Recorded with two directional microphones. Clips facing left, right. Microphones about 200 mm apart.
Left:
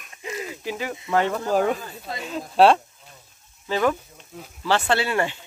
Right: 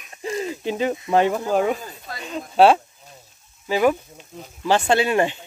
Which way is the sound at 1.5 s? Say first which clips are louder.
Right 1 dB; centre (ahead or behind).